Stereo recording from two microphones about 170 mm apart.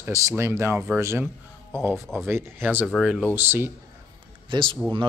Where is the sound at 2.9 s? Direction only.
5° left (ahead or behind).